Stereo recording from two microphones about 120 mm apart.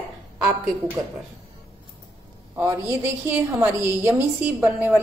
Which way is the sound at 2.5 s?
15° right (ahead or behind).